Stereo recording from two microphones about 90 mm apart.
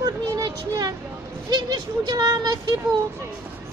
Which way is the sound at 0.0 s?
40° right (ahead or behind).